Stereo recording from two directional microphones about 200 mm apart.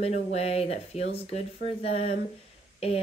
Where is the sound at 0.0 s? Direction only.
30° left (ahead or behind).